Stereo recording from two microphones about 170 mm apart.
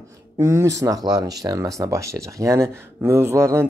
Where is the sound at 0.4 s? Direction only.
15° right (ahead or behind).